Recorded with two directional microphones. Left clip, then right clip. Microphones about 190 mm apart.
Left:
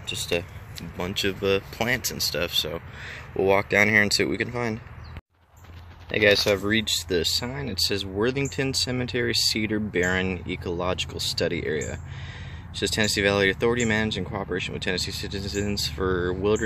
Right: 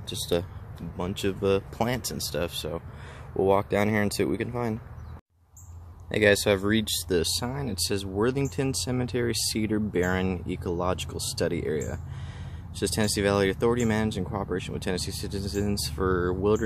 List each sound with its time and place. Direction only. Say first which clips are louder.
0.1 s speech: left 1 dB; 30° right (ahead or behind)
0.9 s speech: left 3 dB; 15° right (ahead or behind)
6.1 s speech: left 2 dB; 20° right (ahead or behind)